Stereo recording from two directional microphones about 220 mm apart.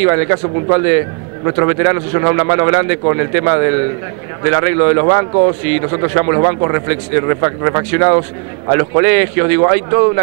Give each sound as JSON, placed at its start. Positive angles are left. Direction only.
{"t": 0.0, "sound": "a man's voice", "side_deg": -15}